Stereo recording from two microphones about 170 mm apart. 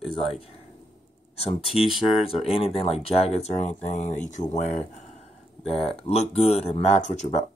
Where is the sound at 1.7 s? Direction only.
Centre (ahead or behind).